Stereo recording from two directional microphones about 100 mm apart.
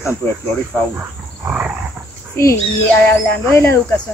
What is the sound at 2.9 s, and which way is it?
Speech, 20° left (ahead or behind).